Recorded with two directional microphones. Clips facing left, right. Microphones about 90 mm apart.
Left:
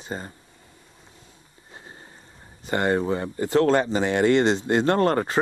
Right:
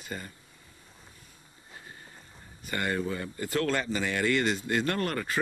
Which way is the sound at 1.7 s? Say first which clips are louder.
Left 4 dB; 30° left (ahead or behind).